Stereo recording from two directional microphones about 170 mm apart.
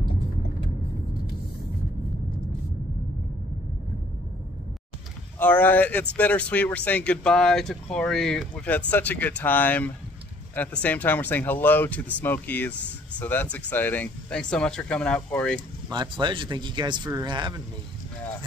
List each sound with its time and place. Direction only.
5.4 s speech: 10° left (ahead or behind)
15.9 s speech: 25° right (ahead or behind)